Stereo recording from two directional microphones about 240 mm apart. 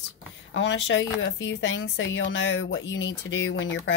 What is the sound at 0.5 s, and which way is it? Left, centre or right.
A woman's voice, left.